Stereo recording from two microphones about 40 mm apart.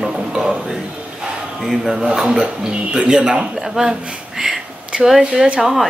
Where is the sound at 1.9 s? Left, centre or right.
Centre.